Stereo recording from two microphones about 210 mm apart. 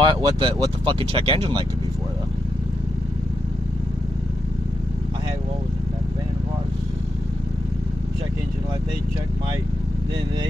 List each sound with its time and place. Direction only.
0.0 s speech: 25° right (ahead or behind)